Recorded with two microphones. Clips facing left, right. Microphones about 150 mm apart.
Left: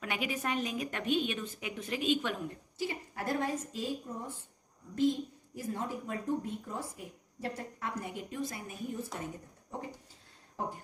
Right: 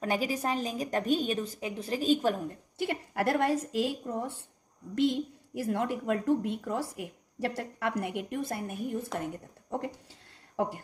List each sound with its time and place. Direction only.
0.0 s a woman's voice: 35° right (ahead or behind)
2.8 s a woman's voice: 70° right (ahead or behind)
10.5 s a sound: 90° right